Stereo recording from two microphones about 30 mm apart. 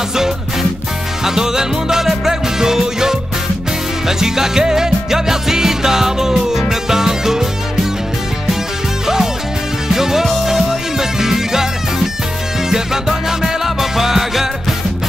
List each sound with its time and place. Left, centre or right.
0.1 s music: centre
4.2 s music: centre
9.0 s music: centre
12.6 s music: centre